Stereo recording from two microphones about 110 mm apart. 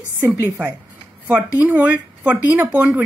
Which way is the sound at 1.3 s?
15° right (ahead or behind).